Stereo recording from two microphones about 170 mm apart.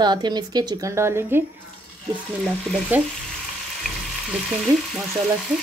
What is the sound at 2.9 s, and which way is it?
Frying, 10° right (ahead or behind).